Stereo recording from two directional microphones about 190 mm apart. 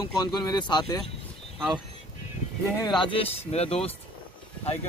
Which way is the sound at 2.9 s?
25° left (ahead or behind).